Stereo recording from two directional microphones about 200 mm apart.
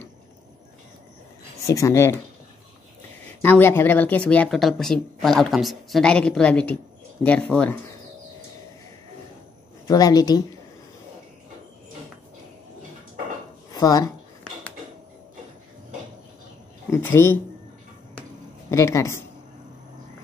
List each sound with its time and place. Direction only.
1.7 s speech: 15° left (ahead or behind)
3.4 s speech: 10° left (ahead or behind)
9.8 s a woman's voice: 20° left (ahead or behind)
13.7 s speech: 15° left (ahead or behind)
16.9 s speech: 10° left (ahead or behind)
18.7 s speech: 15° left (ahead or behind)